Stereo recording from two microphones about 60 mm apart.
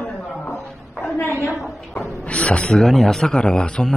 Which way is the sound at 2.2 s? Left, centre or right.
Left.